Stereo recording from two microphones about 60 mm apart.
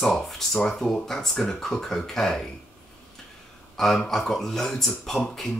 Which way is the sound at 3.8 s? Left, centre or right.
Centre.